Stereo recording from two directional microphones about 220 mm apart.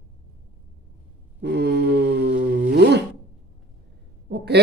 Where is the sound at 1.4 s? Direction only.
50° right (ahead or behind).